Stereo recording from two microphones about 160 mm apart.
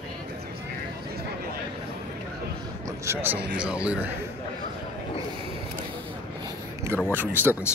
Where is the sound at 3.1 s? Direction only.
10° right (ahead or behind).